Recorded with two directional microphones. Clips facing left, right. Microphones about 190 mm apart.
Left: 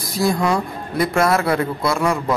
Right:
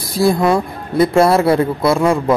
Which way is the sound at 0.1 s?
30° right (ahead or behind).